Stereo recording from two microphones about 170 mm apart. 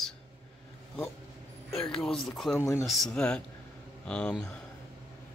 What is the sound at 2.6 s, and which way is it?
Speech, 15° left (ahead or behind).